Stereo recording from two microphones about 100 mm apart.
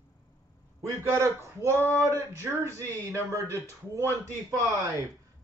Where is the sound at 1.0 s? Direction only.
30° right (ahead or behind).